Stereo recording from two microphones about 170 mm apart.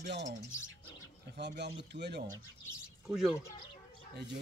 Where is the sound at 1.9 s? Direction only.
85° right.